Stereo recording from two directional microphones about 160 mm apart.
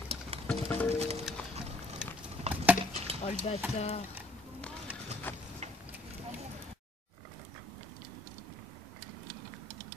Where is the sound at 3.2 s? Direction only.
40° left (ahead or behind).